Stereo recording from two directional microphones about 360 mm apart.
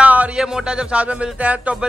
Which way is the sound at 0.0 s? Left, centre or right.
Centre.